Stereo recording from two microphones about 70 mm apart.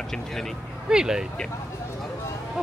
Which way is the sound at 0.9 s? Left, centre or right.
Centre.